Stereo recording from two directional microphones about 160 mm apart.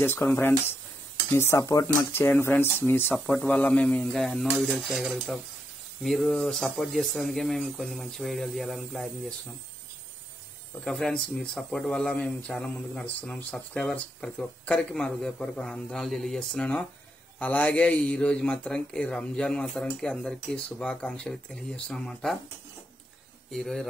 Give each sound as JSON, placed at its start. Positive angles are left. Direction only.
{"t": 0.0, "sound": "speech", "side_deg": 10}
{"t": 10.8, "sound": "speech", "side_deg": 5}
{"t": 23.5, "sound": "speech", "side_deg": 0}